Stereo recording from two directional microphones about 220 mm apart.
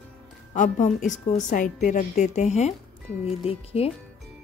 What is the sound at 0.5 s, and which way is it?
Speech, 35° left (ahead or behind).